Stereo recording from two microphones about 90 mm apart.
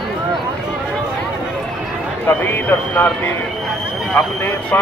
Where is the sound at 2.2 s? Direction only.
25° left (ahead or behind).